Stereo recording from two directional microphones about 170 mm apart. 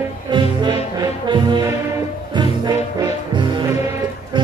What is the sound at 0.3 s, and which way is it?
Music, 25° right (ahead or behind).